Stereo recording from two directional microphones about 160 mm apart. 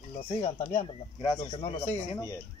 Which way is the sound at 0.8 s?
30° left (ahead or behind).